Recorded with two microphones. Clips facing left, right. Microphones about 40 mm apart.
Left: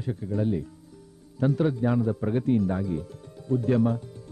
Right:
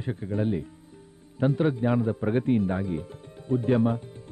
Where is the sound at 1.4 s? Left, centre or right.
Right.